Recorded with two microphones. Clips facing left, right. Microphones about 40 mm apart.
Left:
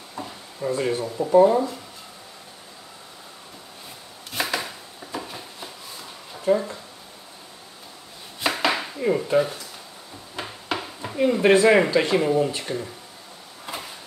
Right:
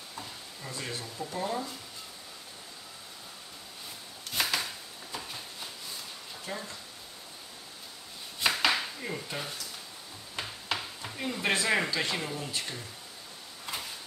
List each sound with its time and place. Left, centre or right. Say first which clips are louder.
0.1 s a sound: left 9 dB; left
1.3 s speech: left 19 dB; left
4.3 s chopping: left 4 dB; centre
6.3 s speech: left 18 dB; left
8.4 s chopping: left 4 dB; centre
10.7 s speech: left 7 dB; centre
13.7 s a sound: left 4 dB; centre